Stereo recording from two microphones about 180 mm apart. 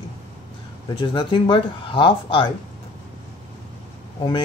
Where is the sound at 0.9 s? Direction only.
30° left (ahead or behind).